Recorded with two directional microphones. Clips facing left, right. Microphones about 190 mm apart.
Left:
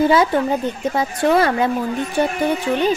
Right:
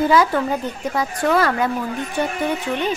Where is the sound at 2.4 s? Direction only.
35° left (ahead or behind).